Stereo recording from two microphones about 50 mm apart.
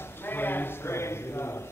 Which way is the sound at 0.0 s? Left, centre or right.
Left.